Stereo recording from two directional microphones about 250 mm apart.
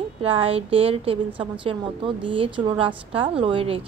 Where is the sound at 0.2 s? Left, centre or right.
Right.